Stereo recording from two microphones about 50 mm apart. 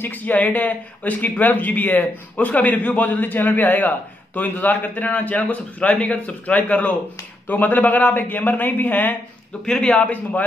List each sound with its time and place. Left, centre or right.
0.0 s a man's voice: left
9.7 s a man's voice: left